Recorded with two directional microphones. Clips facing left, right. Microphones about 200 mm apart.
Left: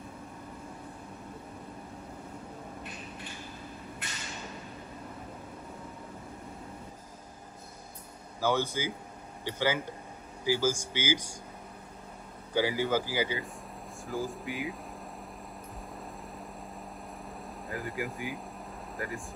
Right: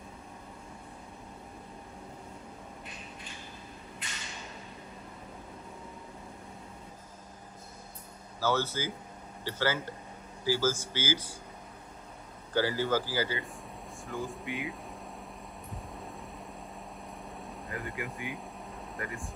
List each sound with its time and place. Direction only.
8.4 s speech: 15° left (ahead or behind)
12.5 s speech: 15° left (ahead or behind)
14.0 s speech: centre (ahead or behind)
17.6 s speech: centre (ahead or behind)